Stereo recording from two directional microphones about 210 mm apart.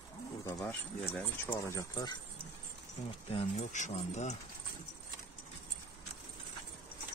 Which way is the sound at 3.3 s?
30° left (ahead or behind).